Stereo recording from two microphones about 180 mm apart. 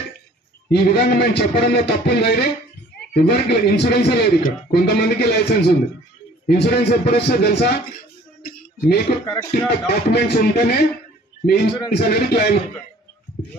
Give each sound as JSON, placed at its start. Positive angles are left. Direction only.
{"t": 0.7, "sound": "a man's voice", "side_deg": 65}
{"t": 9.2, "sound": "speech", "side_deg": 20}
{"t": 9.5, "sound": "a man's voice", "side_deg": 65}
{"t": 11.9, "sound": "a man's voice", "side_deg": 60}